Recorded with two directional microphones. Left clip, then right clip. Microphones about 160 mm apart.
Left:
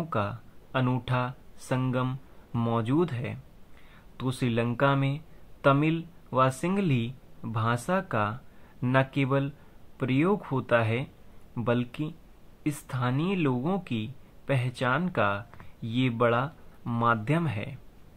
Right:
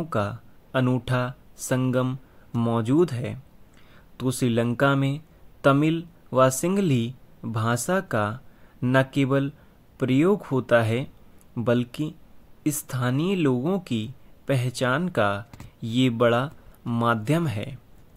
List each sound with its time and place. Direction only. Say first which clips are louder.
0.0 s speech: right 3 dB; 45° right (ahead or behind)